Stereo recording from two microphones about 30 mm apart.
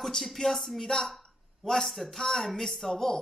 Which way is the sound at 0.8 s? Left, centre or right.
Centre.